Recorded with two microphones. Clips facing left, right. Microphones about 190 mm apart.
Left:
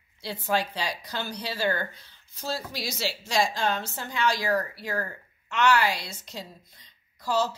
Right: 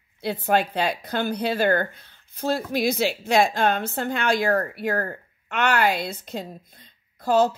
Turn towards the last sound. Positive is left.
turn(degrees=-55)  # may be behind; listen again after turning